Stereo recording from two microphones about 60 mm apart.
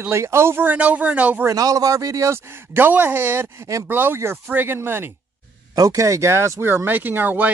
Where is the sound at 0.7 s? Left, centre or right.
Right.